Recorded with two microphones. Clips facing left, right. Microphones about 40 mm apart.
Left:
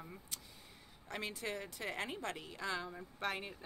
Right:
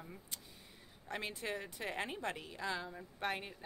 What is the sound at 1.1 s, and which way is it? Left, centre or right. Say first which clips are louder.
A woman's voice: right 1 dB; centre.